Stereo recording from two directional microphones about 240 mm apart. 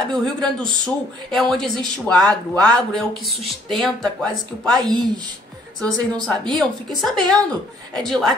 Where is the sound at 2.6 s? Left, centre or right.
Centre.